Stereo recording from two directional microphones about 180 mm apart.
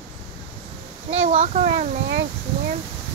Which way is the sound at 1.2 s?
35° right (ahead or behind).